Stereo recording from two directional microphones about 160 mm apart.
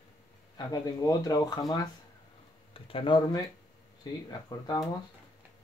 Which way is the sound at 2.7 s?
35° left (ahead or behind).